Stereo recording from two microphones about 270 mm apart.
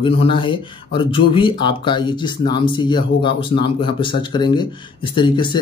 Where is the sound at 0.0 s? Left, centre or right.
Centre.